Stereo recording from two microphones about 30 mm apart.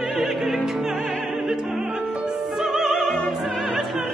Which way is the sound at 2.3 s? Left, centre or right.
Centre.